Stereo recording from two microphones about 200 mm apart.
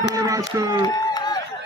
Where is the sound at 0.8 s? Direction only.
20° left (ahead or behind).